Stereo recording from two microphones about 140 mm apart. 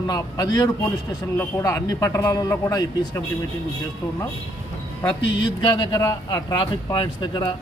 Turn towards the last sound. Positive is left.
turn(degrees=40)  # may be behind; listen again after turning